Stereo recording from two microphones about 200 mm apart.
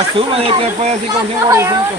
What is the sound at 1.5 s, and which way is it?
Speech, 15° right (ahead or behind).